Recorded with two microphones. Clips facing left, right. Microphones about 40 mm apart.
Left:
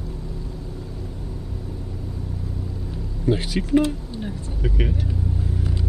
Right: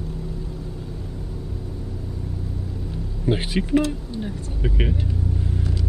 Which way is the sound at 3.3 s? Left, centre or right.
Right.